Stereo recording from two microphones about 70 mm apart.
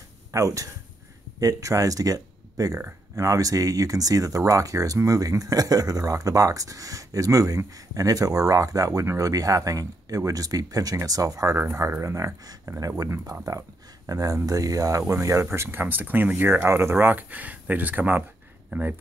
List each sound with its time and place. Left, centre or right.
0.3 s speech: right
11.5 s speech: right
15.8 s speech: right